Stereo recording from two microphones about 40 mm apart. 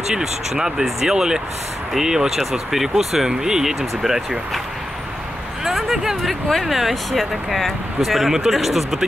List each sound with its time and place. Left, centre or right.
0.2 s speech: centre
5.6 s a sound: centre
6.6 s speech: centre